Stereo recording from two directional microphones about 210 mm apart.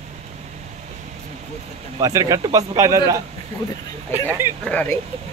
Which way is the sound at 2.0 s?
15° right (ahead or behind).